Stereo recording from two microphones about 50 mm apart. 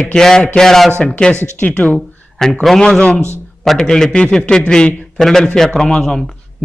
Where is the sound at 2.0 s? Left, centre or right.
Centre.